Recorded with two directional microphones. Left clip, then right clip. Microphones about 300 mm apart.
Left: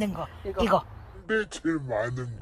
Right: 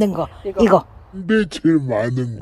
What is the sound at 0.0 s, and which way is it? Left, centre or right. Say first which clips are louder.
Speech: right 12 dB; right.